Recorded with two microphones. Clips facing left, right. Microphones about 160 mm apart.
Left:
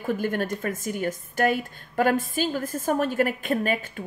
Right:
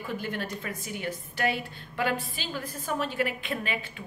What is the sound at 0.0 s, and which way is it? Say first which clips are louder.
Speech: left 7 dB; 45° left (ahead or behind).